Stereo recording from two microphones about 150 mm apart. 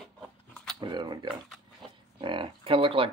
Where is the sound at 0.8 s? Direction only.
30° right (ahead or behind).